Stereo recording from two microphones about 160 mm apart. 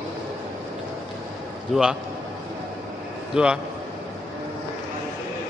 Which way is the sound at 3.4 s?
5° right (ahead or behind).